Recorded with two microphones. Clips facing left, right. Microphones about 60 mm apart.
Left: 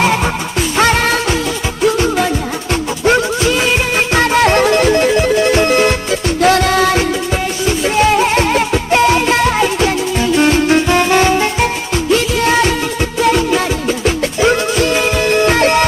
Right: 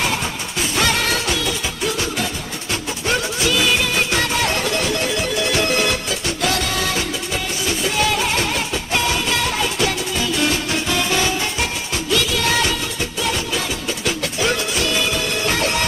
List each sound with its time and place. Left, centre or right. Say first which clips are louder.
0.7 s music: left 7 dB; left
13.2 s music: left 11 dB; left